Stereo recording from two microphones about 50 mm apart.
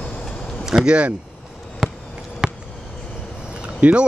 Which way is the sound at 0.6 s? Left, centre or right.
Centre.